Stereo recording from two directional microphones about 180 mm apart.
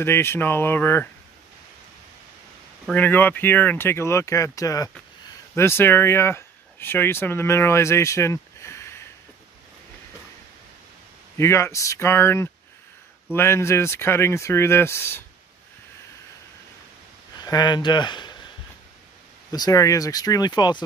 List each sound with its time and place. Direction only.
0.0 s speech: 10° left (ahead or behind)
2.9 s speech: 10° left (ahead or behind)
11.3 s speech: 15° left (ahead or behind)
17.4 s speech: 25° left (ahead or behind)
19.5 s speech: 20° left (ahead or behind)